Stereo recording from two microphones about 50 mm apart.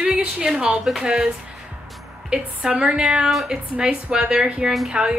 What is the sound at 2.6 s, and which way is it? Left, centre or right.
Speech, centre.